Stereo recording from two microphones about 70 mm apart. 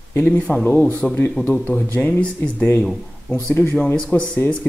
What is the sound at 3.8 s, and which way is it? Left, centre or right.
Speech, centre.